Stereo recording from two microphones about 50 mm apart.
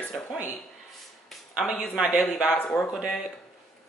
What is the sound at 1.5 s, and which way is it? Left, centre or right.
Speech, centre.